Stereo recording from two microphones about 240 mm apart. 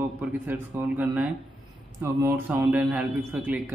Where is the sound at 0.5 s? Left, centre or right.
Centre.